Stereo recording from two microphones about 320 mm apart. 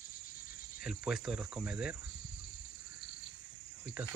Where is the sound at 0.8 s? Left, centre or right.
Centre.